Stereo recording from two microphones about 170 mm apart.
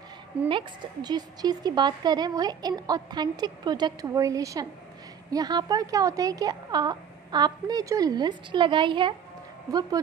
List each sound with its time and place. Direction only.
0.5 s a woman's voice: 25° right (ahead or behind)